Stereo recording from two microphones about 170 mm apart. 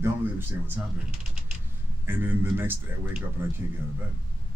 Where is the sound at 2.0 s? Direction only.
10° right (ahead or behind).